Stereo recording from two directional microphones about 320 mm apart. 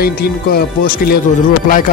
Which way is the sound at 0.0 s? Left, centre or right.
Left.